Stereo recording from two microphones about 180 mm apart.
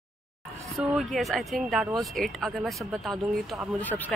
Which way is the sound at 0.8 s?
Centre (ahead or behind).